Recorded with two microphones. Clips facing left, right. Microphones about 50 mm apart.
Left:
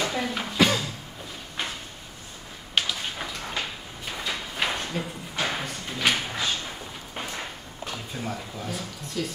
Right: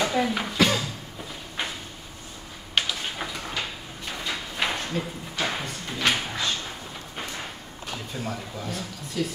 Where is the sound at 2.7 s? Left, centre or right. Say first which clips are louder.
Even; centre.